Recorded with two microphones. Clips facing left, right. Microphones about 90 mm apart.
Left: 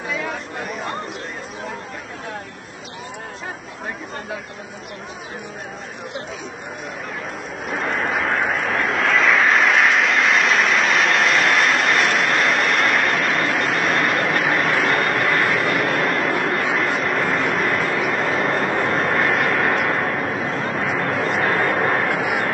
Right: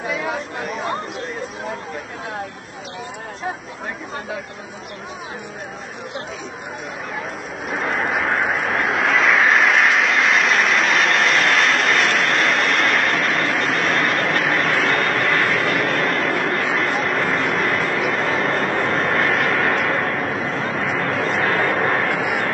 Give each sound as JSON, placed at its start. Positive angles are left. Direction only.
{"t": 0.1, "sound": "chatter", "side_deg": -5}
{"t": 7.6, "sound": "a sound", "side_deg": 0}
{"t": 21.1, "sound": "vehicle", "side_deg": 0}